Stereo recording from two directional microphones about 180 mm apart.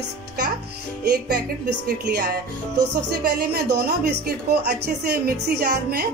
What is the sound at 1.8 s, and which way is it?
Music, 60° right (ahead or behind).